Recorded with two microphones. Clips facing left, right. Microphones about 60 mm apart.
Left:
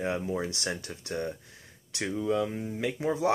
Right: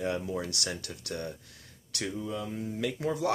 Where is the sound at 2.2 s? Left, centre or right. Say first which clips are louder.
Left 11 dB; left.